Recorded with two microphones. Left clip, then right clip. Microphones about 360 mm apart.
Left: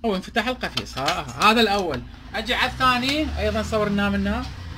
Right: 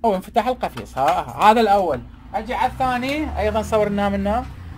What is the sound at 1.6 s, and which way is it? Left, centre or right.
Speech, right.